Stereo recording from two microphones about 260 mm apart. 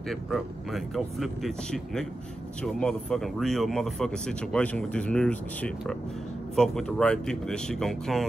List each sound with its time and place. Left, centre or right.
0.1 s speech: centre